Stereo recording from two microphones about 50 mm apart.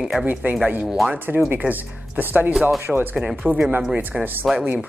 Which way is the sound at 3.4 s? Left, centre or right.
Right.